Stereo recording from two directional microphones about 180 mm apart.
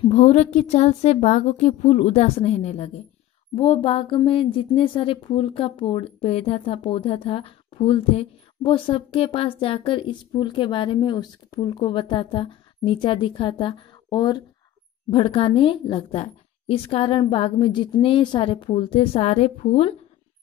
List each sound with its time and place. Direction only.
0.0 s a woman's voice: 40° left (ahead or behind)